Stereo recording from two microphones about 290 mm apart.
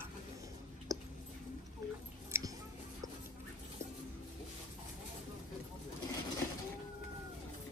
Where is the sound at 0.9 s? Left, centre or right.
Centre.